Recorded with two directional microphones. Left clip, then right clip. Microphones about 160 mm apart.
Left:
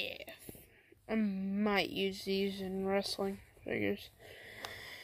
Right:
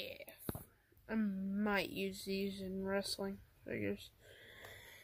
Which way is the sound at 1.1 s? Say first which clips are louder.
Left 4 dB; 10° right (ahead or behind).